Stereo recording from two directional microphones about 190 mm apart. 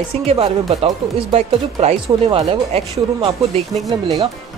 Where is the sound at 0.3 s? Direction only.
25° right (ahead or behind).